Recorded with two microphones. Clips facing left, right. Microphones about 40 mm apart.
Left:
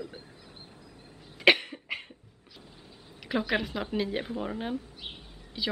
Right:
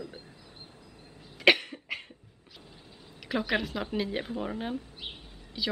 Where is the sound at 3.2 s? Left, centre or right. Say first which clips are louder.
Left 1 dB; centre.